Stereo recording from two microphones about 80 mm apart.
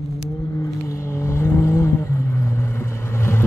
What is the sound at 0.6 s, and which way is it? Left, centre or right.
Vehicle, left.